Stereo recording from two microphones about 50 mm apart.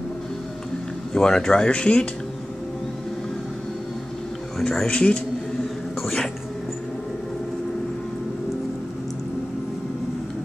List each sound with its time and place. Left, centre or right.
1.1 s speech: centre
4.8 s speech: left
6.0 s cat: centre